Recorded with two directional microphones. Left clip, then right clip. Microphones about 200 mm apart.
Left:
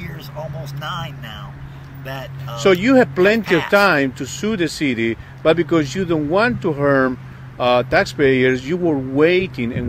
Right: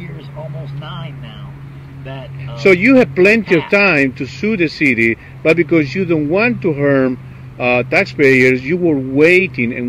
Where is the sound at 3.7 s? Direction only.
Centre (ahead or behind).